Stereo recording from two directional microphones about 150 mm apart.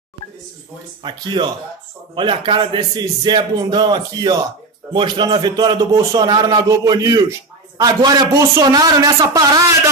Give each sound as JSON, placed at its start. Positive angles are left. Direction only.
{"t": 1.0, "sound": "a man's voice", "side_deg": -30}